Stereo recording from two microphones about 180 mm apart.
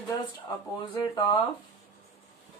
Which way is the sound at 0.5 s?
20° left (ahead or behind).